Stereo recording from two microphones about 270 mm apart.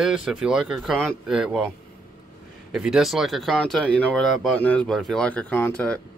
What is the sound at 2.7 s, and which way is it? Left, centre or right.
Speech, centre.